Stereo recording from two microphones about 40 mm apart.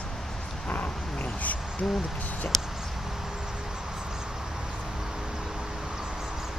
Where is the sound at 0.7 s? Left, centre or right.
Left.